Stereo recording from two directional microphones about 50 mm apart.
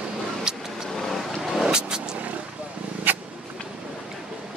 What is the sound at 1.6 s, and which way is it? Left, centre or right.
Vehicle, centre.